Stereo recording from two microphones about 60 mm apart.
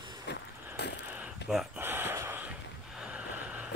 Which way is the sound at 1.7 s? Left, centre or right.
Right.